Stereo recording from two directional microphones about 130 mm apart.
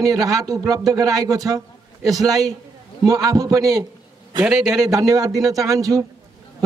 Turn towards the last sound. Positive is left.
turn(degrees=-25)  # may be behind; listen again after turning